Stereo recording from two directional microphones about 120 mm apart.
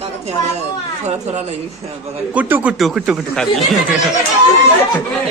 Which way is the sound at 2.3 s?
10° right (ahead or behind).